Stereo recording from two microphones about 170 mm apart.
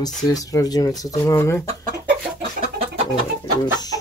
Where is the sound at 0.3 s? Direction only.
20° left (ahead or behind).